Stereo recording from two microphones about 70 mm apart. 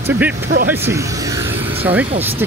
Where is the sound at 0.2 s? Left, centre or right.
Right.